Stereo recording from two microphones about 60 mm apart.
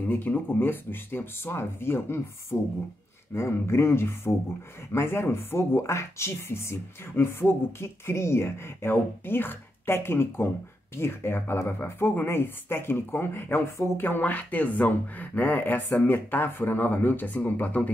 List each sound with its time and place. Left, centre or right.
0.0 s speech: left